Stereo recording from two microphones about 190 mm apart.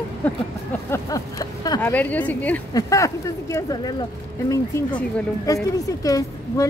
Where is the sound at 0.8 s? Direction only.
15° left (ahead or behind).